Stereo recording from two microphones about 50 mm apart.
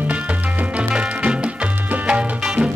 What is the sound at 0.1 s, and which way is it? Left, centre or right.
Music, right.